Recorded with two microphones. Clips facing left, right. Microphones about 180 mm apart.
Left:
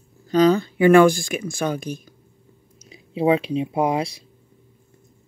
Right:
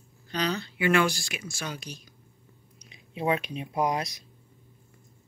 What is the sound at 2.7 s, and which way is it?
Speech, 30° left (ahead or behind).